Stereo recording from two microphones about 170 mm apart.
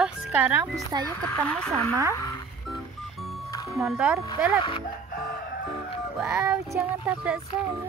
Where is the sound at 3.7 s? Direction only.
5° right (ahead or behind).